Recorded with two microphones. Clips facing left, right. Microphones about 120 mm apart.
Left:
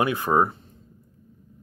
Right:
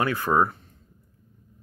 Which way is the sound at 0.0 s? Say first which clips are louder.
Left 1 dB; 15° left (ahead or behind).